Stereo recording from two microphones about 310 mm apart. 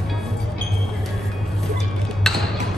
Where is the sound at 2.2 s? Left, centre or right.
Centre.